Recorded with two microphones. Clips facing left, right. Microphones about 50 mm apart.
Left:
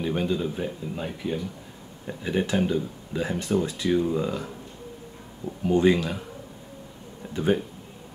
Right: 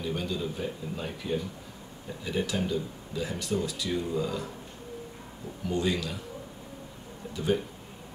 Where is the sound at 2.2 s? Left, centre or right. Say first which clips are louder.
Left 6 dB; left.